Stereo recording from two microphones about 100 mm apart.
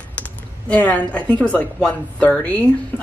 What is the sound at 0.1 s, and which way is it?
Speech, 15° left (ahead or behind).